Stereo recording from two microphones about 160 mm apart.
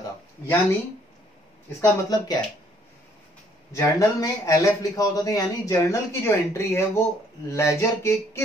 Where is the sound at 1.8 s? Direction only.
25° left (ahead or behind).